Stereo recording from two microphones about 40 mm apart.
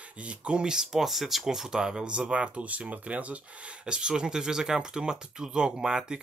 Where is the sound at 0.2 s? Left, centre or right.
Right.